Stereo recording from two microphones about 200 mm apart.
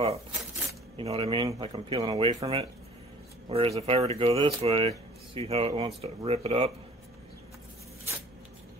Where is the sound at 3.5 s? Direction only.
30° right (ahead or behind).